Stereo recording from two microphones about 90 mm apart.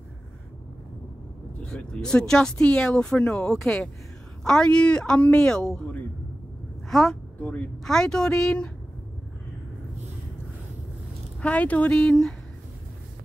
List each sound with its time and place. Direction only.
1.6 s a woman's voice: 10° left (ahead or behind)
7.3 s speech: 20° left (ahead or behind)
7.8 s speech: 5° left (ahead or behind)
11.4 s speech: 15° left (ahead or behind)